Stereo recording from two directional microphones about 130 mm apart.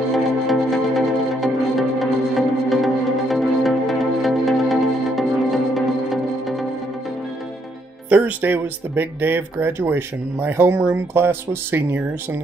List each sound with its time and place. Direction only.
0.1 s music: centre (ahead or behind)
8.1 s speech: 15° right (ahead or behind)